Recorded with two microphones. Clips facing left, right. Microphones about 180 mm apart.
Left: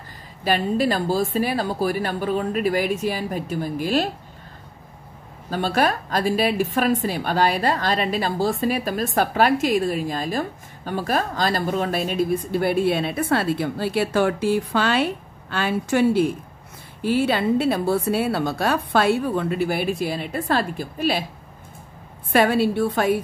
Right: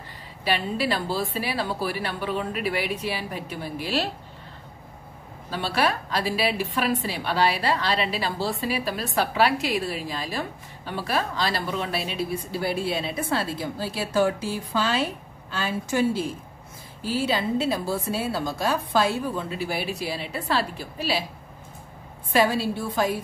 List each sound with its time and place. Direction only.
0.4 s a woman's voice: 45° left (ahead or behind)
5.5 s a woman's voice: 45° left (ahead or behind)
22.3 s a woman's voice: 60° left (ahead or behind)